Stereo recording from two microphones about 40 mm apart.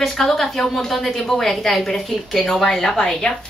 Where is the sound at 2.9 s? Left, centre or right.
Centre.